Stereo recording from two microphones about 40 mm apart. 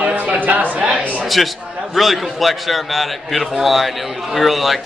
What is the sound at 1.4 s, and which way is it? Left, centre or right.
A man's voice, centre.